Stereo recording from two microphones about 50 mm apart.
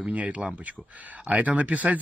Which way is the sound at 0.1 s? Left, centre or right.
Right.